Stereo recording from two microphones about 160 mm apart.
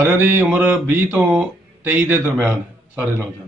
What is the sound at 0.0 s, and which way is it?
Speech, 10° right (ahead or behind).